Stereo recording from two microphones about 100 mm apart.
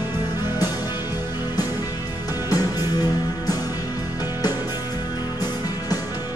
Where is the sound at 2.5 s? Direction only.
40° left (ahead or behind).